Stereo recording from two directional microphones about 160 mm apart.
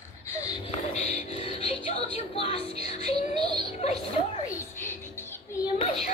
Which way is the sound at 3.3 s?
75° right (ahead or behind).